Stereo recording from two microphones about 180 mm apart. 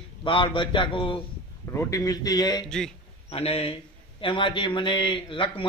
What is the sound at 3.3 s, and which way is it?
A man's voice, 35° left (ahead or behind).